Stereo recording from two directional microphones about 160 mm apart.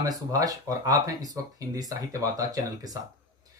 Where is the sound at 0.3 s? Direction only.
20° right (ahead or behind).